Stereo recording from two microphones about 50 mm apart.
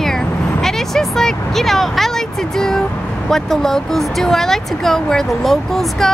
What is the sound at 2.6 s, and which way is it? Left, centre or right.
Speech, centre.